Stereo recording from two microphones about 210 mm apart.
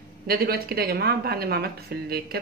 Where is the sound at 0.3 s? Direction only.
45° right (ahead or behind).